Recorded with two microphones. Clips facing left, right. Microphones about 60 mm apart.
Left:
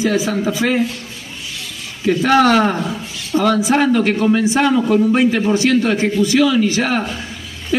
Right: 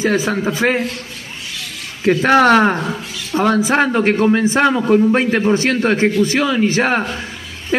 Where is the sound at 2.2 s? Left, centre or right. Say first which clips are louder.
Right 2 dB; right.